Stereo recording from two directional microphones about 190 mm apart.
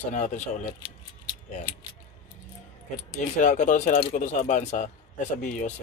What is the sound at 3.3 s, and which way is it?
Speech, 40° left (ahead or behind).